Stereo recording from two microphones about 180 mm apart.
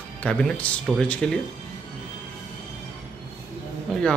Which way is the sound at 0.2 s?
5° left (ahead or behind).